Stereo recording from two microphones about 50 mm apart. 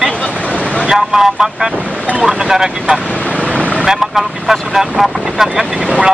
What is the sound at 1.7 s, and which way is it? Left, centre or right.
Speech, right.